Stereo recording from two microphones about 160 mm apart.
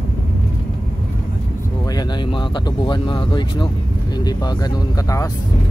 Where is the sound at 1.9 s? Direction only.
25° left (ahead or behind).